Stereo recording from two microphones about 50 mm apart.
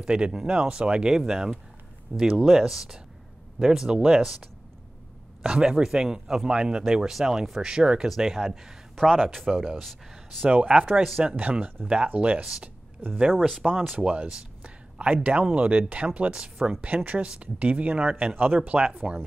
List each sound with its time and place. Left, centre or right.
0.0 s speech: centre
5.4 s speech: centre
6.9 s speech: centre
8.9 s speech: centre
10.5 s speech: right
13.3 s speech: centre
13.9 s speech: right
16.8 s speech: right